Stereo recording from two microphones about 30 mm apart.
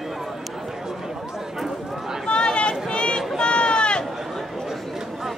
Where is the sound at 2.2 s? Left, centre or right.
Left.